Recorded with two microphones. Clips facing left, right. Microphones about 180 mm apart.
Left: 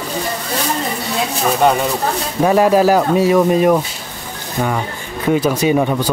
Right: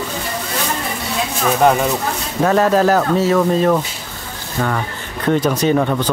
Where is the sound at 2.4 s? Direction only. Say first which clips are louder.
Left 2 dB; 10° left (ahead or behind).